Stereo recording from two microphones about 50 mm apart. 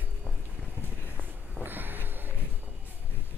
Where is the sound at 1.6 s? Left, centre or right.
Right.